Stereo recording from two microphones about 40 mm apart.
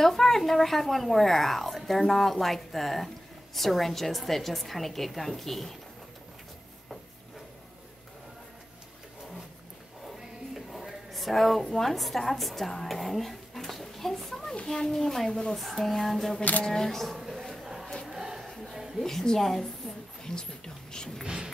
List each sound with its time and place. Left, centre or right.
0.0 s a woman's voice: centre
10.0 s music: centre
11.1 s a woman's voice: centre
17.2 s a sound: centre
19.0 s a woman's voice: centre
20.2 s speech: centre